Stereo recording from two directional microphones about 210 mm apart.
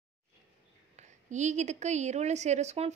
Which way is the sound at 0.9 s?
35° right (ahead or behind).